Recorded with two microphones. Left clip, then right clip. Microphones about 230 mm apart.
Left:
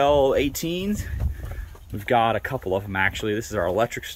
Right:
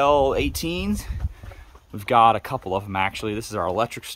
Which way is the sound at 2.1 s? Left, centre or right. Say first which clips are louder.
Right 4 dB; centre.